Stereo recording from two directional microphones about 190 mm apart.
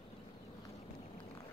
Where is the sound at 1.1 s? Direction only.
30° left (ahead or behind).